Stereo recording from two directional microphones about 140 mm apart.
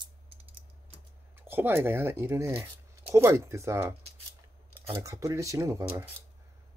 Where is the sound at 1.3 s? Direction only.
15° right (ahead or behind).